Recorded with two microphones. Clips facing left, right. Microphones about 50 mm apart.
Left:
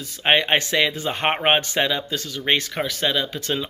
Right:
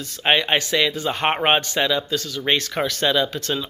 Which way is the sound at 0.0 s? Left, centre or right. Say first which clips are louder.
Even; centre.